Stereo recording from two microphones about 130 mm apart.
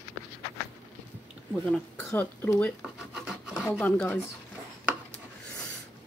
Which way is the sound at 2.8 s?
5° right (ahead or behind).